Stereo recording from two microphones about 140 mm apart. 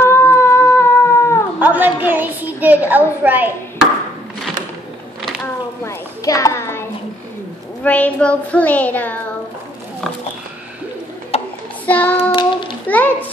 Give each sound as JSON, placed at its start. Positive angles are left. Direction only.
{"t": 0.0, "sound": "cat", "side_deg": 20}
{"t": 1.6, "sound": "a woman's voice", "side_deg": -15}
{"t": 5.9, "sound": "a child's voice", "side_deg": 25}
{"t": 11.8, "sound": "child singing", "side_deg": 10}
{"t": 12.8, "sound": "a child's voice", "side_deg": 10}